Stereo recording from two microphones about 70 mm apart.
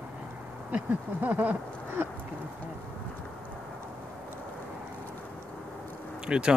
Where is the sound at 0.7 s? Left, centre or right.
Right.